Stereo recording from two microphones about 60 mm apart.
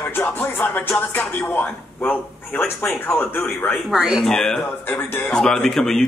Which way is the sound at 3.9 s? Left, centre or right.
Centre.